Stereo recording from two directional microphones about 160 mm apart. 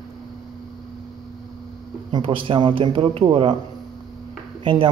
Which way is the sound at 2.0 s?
30° right (ahead or behind).